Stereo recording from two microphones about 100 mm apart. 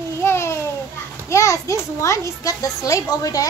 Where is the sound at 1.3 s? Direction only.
30° left (ahead or behind).